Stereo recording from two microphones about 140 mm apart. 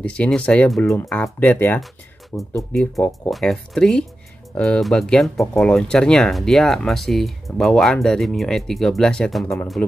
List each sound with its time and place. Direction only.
0.0 s speech: 10° left (ahead or behind)
1.4 s speech: 15° left (ahead or behind)